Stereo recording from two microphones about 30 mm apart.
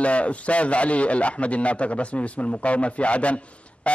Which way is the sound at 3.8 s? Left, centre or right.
Left.